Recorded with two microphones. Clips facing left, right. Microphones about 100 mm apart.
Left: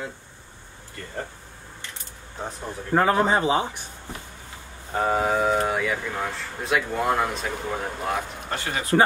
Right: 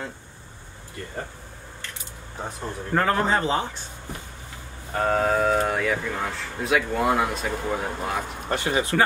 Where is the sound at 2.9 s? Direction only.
15° left (ahead or behind).